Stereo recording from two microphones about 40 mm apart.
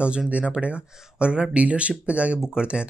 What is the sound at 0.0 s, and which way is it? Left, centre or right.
Speech, right.